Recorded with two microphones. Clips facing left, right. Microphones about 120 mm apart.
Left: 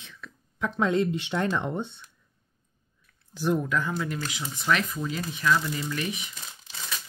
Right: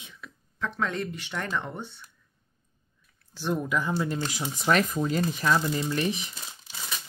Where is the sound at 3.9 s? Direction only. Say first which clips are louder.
Right 2 dB; 30° right (ahead or behind).